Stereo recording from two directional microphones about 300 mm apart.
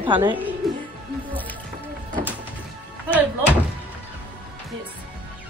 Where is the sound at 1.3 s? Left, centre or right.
Centre.